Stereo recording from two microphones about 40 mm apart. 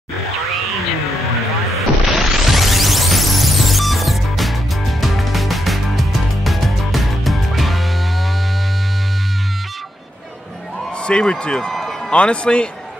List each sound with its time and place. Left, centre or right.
2.1 s music: centre
11.1 s speech: left